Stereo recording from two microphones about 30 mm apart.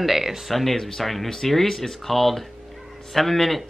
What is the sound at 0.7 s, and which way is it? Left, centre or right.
Speech, centre.